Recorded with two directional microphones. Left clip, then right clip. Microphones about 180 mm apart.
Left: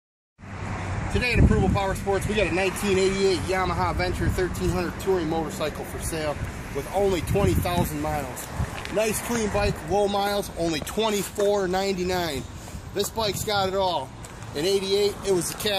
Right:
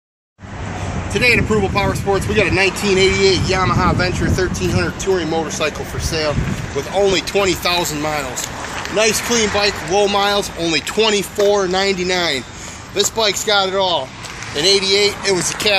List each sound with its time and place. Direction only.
1.2 s speech: 45° left (ahead or behind)
7.0 s speech: 35° left (ahead or behind)
9.3 s speech: 30° left (ahead or behind)
9.9 s speech: 60° left (ahead or behind)